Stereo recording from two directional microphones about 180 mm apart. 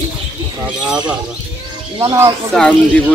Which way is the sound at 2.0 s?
20° right (ahead or behind).